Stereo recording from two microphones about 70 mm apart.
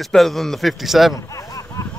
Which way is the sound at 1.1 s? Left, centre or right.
Left.